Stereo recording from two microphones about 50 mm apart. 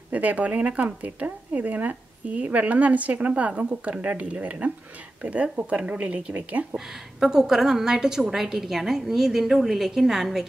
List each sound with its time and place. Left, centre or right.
0.1 s speech: right
6.9 s a woman's voice: centre